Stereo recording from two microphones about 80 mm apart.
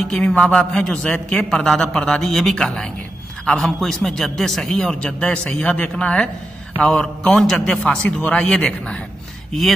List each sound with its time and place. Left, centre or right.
0.2 s a man's voice: centre